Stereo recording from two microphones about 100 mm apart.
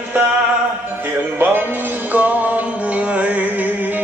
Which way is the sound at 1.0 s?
20° right (ahead or behind).